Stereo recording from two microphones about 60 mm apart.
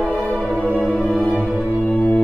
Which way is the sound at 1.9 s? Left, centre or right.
Centre.